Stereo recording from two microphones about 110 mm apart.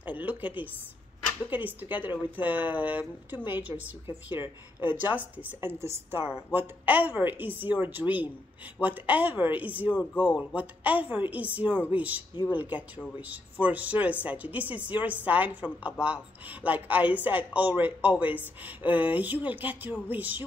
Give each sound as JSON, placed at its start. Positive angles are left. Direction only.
{"t": 0.0, "sound": "a sound", "side_deg": -15}
{"t": 1.5, "sound": "a woman's voice", "side_deg": -15}
{"t": 6.2, "sound": "speech", "side_deg": -10}